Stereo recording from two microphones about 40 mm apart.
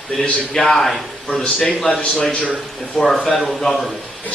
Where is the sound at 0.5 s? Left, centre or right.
Centre.